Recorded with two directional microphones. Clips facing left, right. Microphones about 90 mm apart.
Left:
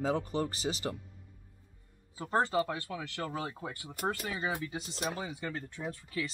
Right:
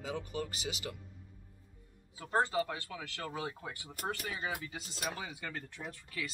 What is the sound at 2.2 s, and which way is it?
Speech, 30° left (ahead or behind).